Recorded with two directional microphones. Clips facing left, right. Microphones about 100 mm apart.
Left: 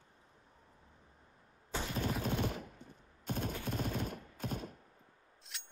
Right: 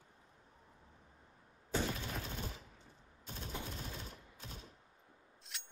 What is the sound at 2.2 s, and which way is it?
Gunshot, 65° left (ahead or behind).